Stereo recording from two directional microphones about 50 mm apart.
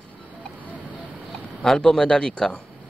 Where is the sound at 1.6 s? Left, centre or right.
Centre.